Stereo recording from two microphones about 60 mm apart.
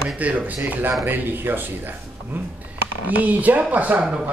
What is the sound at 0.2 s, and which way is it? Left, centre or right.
Speech, right.